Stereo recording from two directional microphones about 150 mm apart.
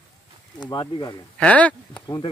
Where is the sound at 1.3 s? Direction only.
10° left (ahead or behind).